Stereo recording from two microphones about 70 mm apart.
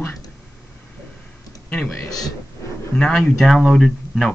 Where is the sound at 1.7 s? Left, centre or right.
Centre.